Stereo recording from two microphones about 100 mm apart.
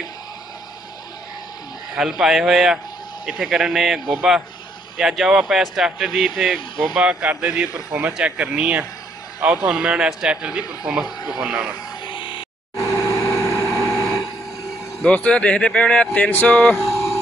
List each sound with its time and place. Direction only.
2.0 s speech: 5° right (ahead or behind)
11.1 s speech: 40° left (ahead or behind)
11.3 s speech: 5° right (ahead or behind)
12.1 s a sound: 55° left (ahead or behind)
12.7 s vehicle: 35° left (ahead or behind)
15.0 s speech: 10° left (ahead or behind)